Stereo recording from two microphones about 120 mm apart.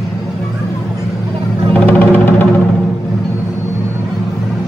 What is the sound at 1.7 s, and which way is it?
Music, 15° left (ahead or behind).